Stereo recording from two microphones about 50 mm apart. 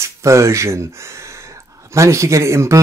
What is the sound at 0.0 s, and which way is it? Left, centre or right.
Speech, right.